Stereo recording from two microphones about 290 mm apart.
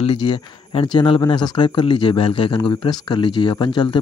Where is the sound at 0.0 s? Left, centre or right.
Centre.